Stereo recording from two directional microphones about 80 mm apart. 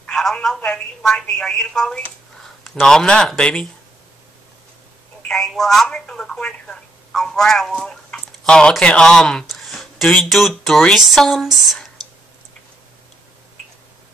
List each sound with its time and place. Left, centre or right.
0.0 s telephone: centre
0.6 s a woman's voice: centre
5.3 s speech: centre